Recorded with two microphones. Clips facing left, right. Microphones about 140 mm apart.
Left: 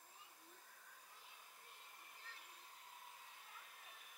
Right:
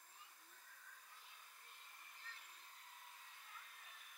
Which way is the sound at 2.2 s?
10° left (ahead or behind).